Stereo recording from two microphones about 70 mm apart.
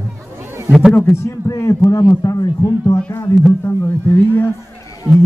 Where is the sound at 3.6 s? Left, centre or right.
Left.